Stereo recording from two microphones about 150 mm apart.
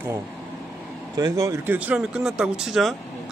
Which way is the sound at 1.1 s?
25° right (ahead or behind).